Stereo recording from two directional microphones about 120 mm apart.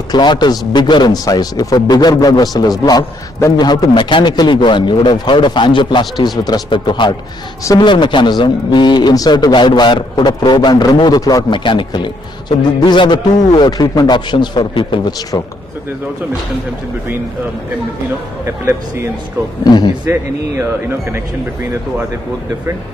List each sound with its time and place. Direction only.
0.1 s a man's voice: 40° left (ahead or behind)
19.6 s a man's voice: 35° left (ahead or behind)